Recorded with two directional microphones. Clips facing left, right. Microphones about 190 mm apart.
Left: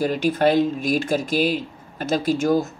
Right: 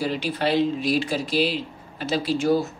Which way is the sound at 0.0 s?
45° left (ahead or behind).